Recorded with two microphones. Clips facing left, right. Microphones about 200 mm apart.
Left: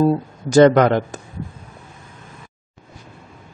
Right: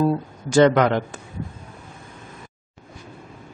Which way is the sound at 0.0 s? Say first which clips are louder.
Left 4 dB; 40° left (ahead or behind).